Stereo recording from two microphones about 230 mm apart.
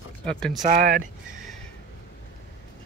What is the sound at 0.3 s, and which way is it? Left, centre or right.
Speech, centre.